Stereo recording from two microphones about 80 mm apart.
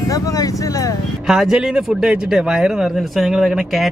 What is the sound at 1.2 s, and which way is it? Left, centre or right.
Speech, centre.